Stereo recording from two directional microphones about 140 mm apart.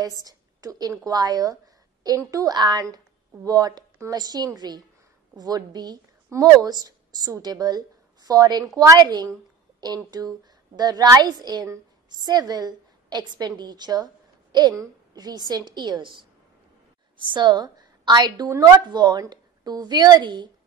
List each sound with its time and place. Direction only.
0.2 s a woman's voice: 25° right (ahead or behind)